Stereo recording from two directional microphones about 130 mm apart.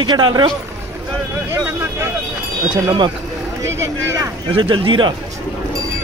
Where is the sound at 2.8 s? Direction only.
35° right (ahead or behind).